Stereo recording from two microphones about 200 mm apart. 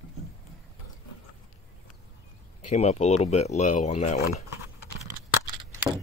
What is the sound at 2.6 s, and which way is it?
Speech, 35° left (ahead or behind).